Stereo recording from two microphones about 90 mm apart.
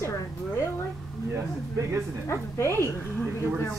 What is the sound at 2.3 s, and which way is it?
Speech, 30° left (ahead or behind).